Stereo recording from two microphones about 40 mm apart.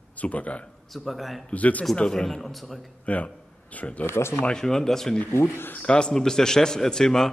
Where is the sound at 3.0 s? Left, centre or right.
Left.